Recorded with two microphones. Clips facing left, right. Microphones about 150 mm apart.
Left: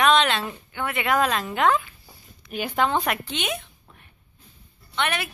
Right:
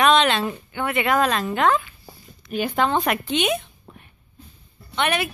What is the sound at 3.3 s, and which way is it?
Speech, 15° right (ahead or behind).